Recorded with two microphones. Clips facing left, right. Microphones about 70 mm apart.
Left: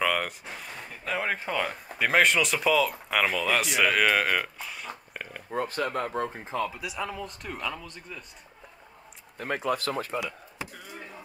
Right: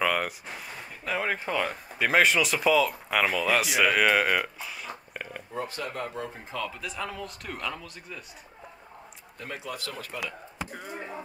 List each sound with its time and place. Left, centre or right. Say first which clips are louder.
0.0 s speech: even; centre
5.5 s speech: left 6 dB; left
6.8 s speech: left 1 dB; centre
9.4 s speech: left 8 dB; left
10.7 s a sound: right 5 dB; right